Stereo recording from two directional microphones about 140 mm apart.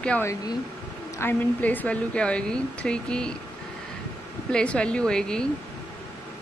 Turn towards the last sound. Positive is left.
turn(degrees=5)  # may be behind; listen again after turning